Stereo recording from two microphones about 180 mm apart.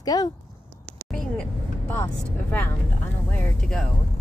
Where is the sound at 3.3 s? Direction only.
5° left (ahead or behind).